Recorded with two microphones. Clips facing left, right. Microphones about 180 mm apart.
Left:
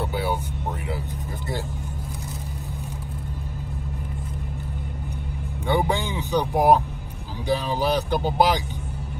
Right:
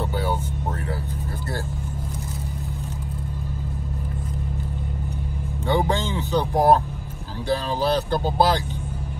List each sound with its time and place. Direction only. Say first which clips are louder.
0.1 s music: even; 10° left (ahead or behind)
5.7 s vehicle: right 1 dB; 15° left (ahead or behind)
7.4 s speech: even; 15° left (ahead or behind)